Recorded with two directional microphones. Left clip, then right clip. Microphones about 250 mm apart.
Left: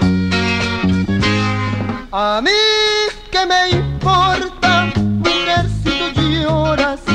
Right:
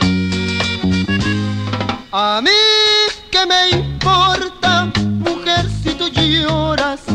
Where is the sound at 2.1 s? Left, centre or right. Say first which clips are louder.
Right 1 dB; left.